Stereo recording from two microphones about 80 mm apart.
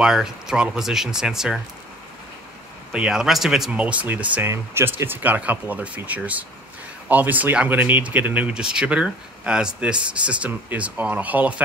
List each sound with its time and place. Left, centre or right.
0.0 s speech: centre
2.9 s speech: centre
3.8 s speech: centre